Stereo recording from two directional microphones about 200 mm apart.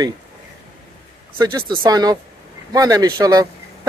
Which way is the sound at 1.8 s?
20° right (ahead or behind).